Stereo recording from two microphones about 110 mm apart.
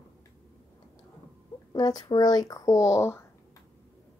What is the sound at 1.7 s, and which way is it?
Speech, 35° left (ahead or behind).